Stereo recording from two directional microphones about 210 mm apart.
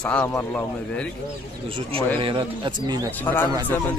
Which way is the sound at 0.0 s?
10° left (ahead or behind).